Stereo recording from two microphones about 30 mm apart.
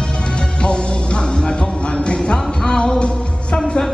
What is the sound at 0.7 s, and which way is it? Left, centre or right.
Music, left.